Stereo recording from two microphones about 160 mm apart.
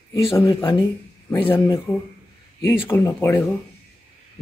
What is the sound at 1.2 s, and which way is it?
Speech, 15° left (ahead or behind).